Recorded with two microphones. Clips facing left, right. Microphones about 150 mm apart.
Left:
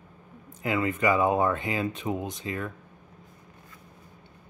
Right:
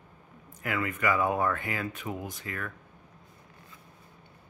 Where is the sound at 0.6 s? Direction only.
25° left (ahead or behind).